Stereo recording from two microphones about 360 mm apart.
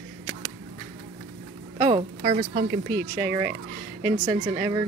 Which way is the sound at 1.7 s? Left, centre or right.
Centre.